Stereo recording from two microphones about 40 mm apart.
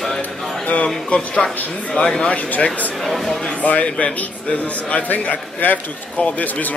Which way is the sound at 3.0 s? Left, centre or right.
Centre.